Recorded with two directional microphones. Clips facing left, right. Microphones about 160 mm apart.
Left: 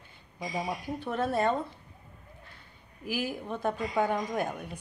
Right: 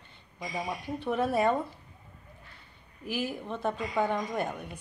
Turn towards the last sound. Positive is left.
turn(degrees=5)  # may be behind; listen again after turning